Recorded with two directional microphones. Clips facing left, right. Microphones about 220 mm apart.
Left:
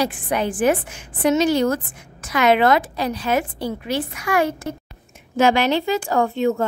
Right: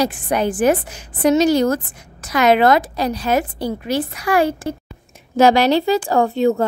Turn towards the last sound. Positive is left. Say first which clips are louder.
# right 3 dB
turn(degrees=-35)  # may be behind; listen again after turning